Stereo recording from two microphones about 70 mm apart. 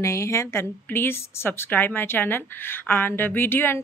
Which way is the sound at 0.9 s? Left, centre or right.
Left.